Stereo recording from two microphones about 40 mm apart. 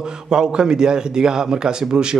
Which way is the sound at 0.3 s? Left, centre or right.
Centre.